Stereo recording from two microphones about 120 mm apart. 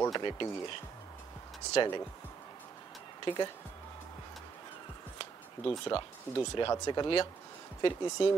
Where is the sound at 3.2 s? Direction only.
45° left (ahead or behind).